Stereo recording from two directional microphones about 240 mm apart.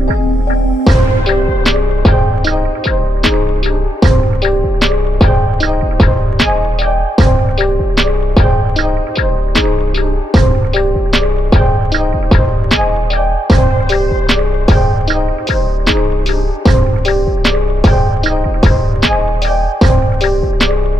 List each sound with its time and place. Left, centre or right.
0.8 s music: centre
4.0 s music: centre
10.3 s music: centre
16.6 s music: centre